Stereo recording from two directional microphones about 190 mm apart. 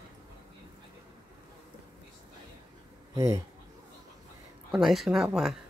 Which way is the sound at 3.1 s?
15° right (ahead or behind).